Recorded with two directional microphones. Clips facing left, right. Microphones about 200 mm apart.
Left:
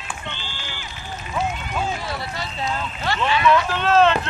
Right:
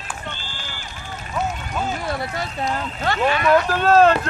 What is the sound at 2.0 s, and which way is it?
Speech, 50° right (ahead or behind).